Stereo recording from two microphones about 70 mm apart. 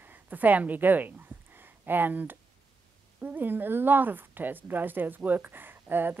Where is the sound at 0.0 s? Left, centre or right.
Right.